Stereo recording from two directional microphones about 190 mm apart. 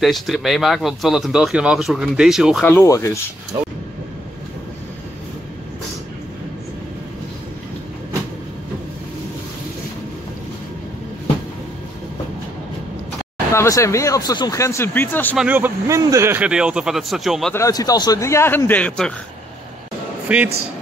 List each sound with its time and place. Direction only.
0.0 s speech: centre (ahead or behind)
2.6 s speech: 15° left (ahead or behind)
13.5 s speech: 15° left (ahead or behind)
15.3 s speech: 10° right (ahead or behind)
17.6 s speech: 20° left (ahead or behind)
20.3 s speech: 5° right (ahead or behind)